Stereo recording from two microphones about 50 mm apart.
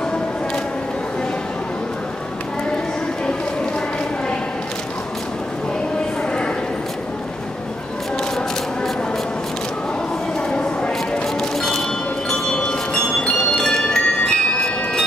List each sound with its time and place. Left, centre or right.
11.5 s music: centre